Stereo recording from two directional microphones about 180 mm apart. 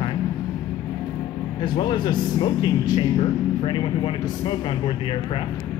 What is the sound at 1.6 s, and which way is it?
Speech, 25° left (ahead or behind).